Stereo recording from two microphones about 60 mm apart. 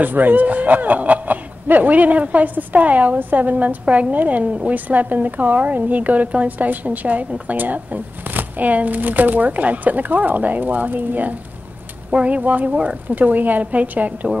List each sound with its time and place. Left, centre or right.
0.0 s speech: right